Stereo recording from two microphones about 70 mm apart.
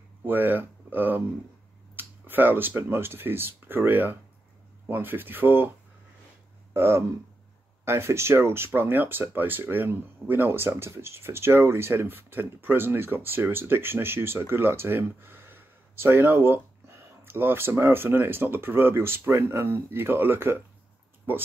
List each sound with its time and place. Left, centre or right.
0.2 s speech: right